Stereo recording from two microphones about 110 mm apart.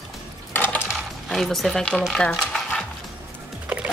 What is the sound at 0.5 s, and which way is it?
Coin, 20° left (ahead or behind).